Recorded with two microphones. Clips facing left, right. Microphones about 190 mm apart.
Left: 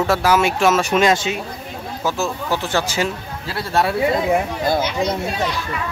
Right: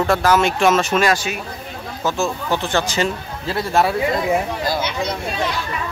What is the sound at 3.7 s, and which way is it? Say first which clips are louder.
Speech: right 1 dB; 5° right (ahead or behind).